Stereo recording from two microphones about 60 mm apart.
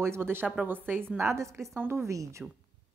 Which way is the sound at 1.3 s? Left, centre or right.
Right.